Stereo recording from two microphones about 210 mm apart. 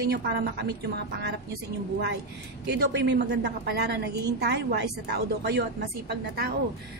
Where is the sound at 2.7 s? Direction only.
50° right (ahead or behind).